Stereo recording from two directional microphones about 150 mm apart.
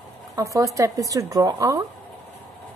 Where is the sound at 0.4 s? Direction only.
20° right (ahead or behind).